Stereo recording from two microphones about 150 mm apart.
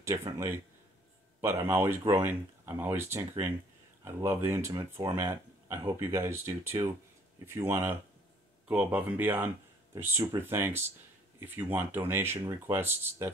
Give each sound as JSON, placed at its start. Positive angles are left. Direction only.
{"t": 0.0, "sound": "a man's voice", "side_deg": -20}